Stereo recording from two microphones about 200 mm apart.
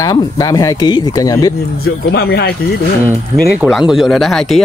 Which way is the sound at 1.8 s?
50° left (ahead or behind).